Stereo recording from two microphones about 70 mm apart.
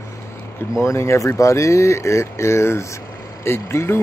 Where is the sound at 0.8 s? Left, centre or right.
Left.